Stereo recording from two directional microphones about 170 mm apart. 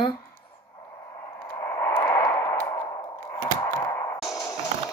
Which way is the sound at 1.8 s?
15° left (ahead or behind).